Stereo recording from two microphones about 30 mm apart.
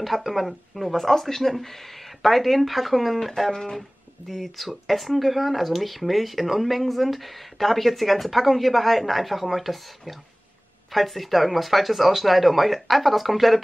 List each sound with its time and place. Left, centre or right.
0.0 s speech: centre
3.5 s speech: centre
4.3 s speech: centre